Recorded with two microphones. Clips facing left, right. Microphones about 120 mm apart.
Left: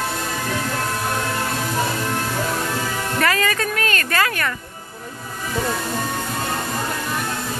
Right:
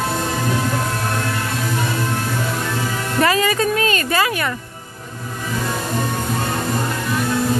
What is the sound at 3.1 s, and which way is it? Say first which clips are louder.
Music: right 4 dB; 20° right (ahead or behind).